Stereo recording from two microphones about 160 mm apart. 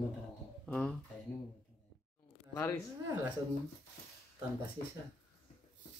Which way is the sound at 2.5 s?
20° left (ahead or behind).